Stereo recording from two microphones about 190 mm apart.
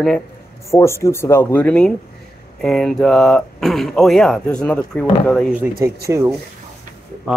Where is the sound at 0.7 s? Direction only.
15° left (ahead or behind).